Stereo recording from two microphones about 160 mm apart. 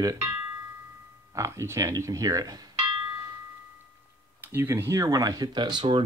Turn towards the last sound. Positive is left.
turn(degrees=-30)  # may be behind; listen again after turning